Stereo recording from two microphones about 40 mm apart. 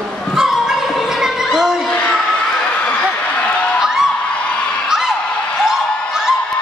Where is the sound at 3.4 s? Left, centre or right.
Left.